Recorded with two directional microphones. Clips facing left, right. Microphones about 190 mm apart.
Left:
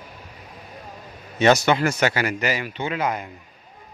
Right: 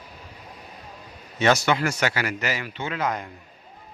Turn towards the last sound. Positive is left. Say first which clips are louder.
# left 2 dB
turn(degrees=10)  # may be behind; listen again after turning